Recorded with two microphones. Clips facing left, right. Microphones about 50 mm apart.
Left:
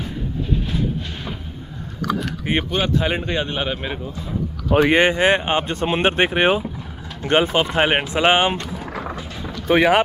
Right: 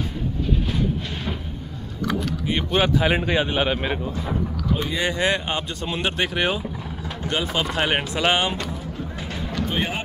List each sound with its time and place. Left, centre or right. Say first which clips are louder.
2.7 s speech: right 5 dB; centre
4.6 s speech: left 12 dB; left
5.1 s speech: left 5 dB; left
9.7 s speech: left 14 dB; left